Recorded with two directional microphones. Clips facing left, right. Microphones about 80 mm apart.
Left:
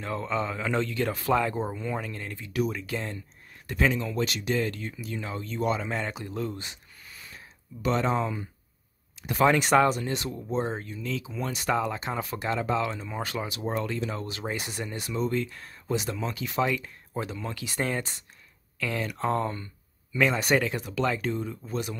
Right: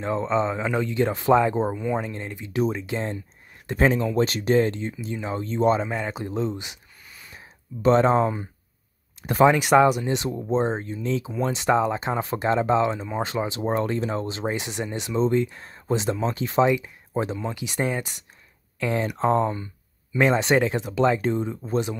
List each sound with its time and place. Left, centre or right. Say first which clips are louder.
0.0 s speech: right 6 dB; right
5.9 s a man's voice: right 3 dB; centre
6.1 s speech: right 6 dB; right
7.8 s speech: right 8 dB; right
9.4 s speech: right 4 dB; centre; by 16.7 s right
16.7 s a sound: right 6 dB; centre
17.2 s speech: right 6 dB; right